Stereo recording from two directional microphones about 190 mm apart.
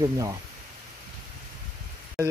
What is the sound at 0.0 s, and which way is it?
Speech, 20° right (ahead or behind).